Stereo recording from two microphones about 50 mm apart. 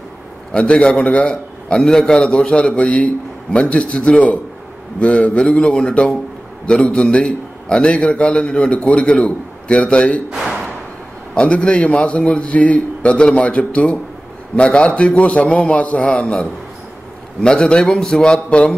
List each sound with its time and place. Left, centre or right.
0.5 s a man's voice: left
10.3 s speech: centre
11.3 s a man's voice: left